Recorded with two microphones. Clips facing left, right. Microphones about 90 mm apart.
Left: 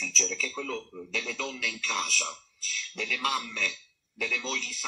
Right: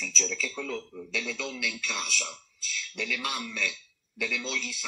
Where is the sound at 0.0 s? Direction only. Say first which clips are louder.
Even; 40° left (ahead or behind).